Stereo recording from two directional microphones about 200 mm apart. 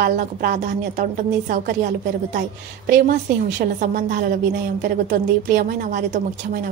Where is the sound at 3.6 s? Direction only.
45° right (ahead or behind).